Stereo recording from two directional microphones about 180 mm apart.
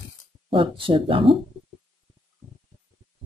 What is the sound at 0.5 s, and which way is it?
Mantra, 30° right (ahead or behind).